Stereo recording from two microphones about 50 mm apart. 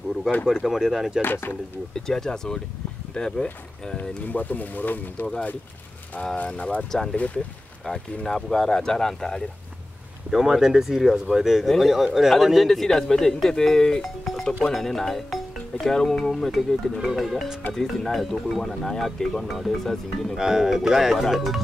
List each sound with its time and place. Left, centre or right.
0.7 s speech: centre
1.2 s speech: left
2.0 s speech: centre
4.3 s speech: left
6.3 s speech: left
6.9 s speech: centre
10.3 s speech: centre
20.3 s speech: centre